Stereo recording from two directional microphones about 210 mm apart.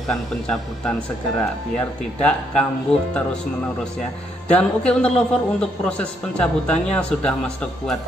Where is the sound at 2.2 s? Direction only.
5° left (ahead or behind).